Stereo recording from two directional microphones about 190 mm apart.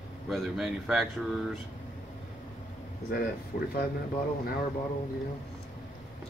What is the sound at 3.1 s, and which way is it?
Speech, 50° left (ahead or behind).